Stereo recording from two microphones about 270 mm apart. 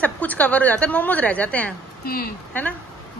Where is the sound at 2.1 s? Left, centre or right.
Left.